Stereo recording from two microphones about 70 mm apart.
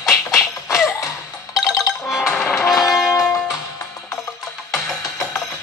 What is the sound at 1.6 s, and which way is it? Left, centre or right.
Music, centre.